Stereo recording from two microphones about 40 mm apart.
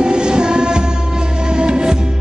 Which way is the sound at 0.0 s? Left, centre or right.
Right.